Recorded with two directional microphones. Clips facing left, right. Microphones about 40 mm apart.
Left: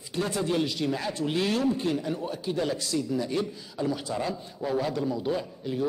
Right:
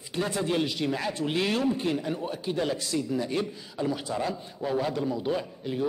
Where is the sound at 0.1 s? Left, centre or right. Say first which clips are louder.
Even; right.